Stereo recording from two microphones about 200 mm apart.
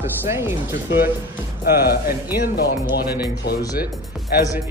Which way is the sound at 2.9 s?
55° left (ahead or behind).